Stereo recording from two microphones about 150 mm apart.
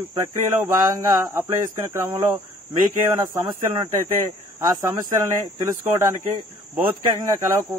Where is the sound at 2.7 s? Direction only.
25° right (ahead or behind).